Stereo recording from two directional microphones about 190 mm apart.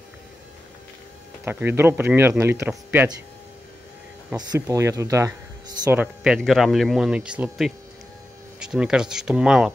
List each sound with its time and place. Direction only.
1.4 s speech: 10° right (ahead or behind)
4.4 s speech: 20° right (ahead or behind)
5.9 s speech: 5° right (ahead or behind)